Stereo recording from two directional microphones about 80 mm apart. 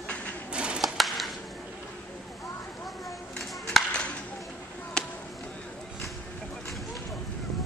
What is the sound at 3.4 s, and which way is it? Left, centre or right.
Music, centre.